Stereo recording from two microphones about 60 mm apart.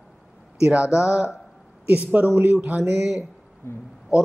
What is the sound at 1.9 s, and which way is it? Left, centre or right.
Speech, right.